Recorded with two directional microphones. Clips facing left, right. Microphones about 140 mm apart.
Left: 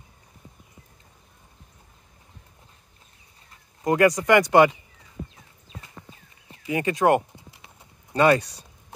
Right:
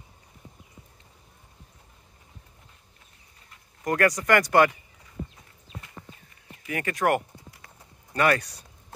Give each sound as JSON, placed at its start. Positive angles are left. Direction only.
{"t": 3.8, "sound": "speech", "side_deg": 20}
{"t": 6.6, "sound": "clip-clop", "side_deg": 20}